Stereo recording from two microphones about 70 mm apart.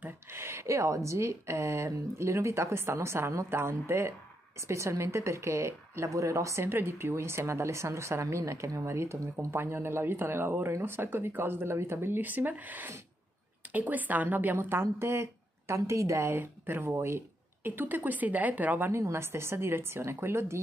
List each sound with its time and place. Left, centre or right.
0.0 s a woman's voice: right
6.6 s a woman's voice: right
16.3 s speech: right
17.6 s speech: right